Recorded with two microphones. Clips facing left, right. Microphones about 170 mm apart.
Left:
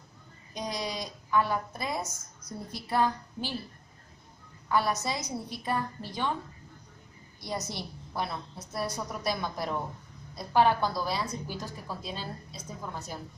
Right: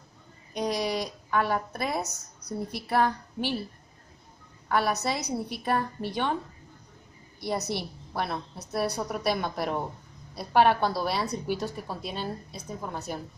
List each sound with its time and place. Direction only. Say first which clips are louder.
0.6 s a woman's voice: right 6 dB; 65° right (ahead or behind)
4.6 s a woman's voice: right 2 dB; 65° right (ahead or behind)
7.3 s a woman's voice: right 6 dB; 65° right (ahead or behind)